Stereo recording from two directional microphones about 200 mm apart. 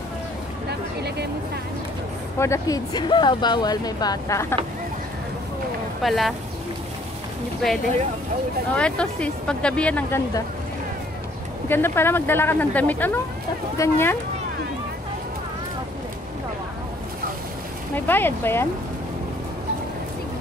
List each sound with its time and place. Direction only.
0.7 s a sound: 55° right (ahead or behind)
2.3 s speech: 15° left (ahead or behind)
6.0 s speech: centre (ahead or behind)
8.7 s speech: 5° left (ahead or behind)
11.7 s speech: 10° left (ahead or behind)
17.9 s speech: 10° left (ahead or behind)